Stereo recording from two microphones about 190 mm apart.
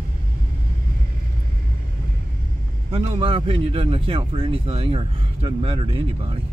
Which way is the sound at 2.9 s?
30° right (ahead or behind).